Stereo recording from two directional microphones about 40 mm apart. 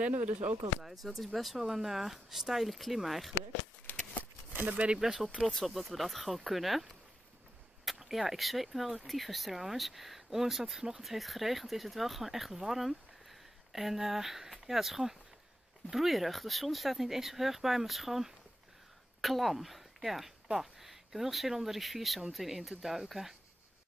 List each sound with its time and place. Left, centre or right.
0.1 s speech: right
0.7 s speech: centre
3.9 s shuffling cards: left
4.6 s speech: right
4.9 s speech: centre
5.4 s speech: centre